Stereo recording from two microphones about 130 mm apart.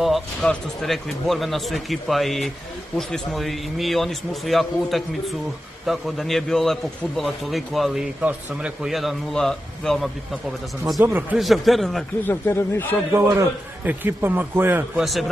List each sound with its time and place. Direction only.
0.0 s speech: centre (ahead or behind)
11.0 s a man's voice: 15° right (ahead or behind)
11.3 s speech: centre (ahead or behind)
12.2 s speech: 15° left (ahead or behind)
13.1 s a man's voice: 15° right (ahead or behind)
15.0 s speech: centre (ahead or behind)